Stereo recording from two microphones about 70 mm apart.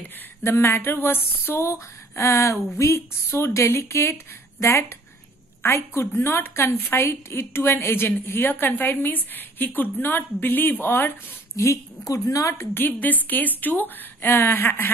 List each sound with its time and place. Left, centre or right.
0.4 s a woman's voice: left
11.5 s a woman's voice: left
12.5 s a woman's voice: left